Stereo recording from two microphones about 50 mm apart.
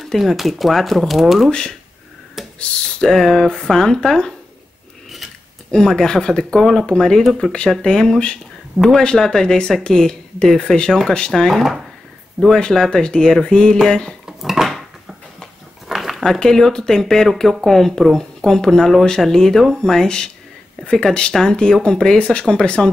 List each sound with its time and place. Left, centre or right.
0.0 s speech: centre
1.5 s speech: centre
2.4 s computer keyboard: centre
3.1 s speech: centre
5.7 s speech: centre
7.8 s speech: centre
8.8 s speech: centre
9.2 s speech: centre
12.4 s speech: right
12.7 s speech: centre
14.2 s dishes: centre
15.9 s a sound: centre
16.3 s speech: centre